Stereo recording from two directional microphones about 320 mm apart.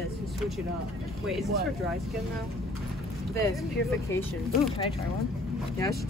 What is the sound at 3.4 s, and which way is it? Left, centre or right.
Speech, centre.